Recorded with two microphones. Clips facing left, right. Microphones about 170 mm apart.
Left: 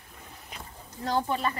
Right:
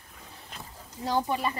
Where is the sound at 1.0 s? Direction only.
10° right (ahead or behind).